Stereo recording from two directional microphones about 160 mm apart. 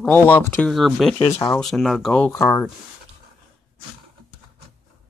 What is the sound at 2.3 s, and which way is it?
Speech, 20° left (ahead or behind).